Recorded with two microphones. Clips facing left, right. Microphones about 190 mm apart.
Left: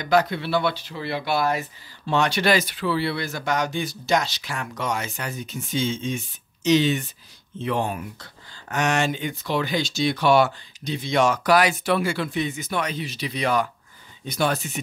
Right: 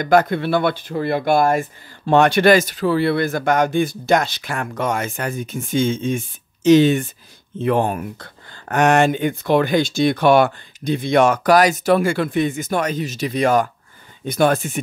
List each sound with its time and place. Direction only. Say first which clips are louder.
0.0 s speech: right 5 dB; 50° right (ahead or behind)